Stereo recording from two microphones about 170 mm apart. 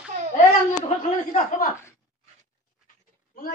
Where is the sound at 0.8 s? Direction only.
50° left (ahead or behind).